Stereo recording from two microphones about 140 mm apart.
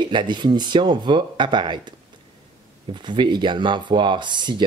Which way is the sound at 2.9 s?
35° right (ahead or behind).